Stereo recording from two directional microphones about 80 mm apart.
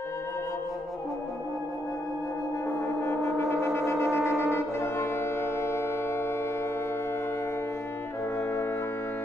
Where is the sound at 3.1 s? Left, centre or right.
Left.